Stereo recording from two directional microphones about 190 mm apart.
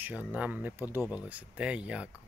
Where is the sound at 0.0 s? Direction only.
10° right (ahead or behind).